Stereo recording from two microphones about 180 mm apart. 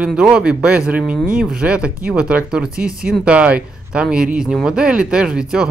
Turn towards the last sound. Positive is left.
turn(degrees=-5)  # may be behind; listen again after turning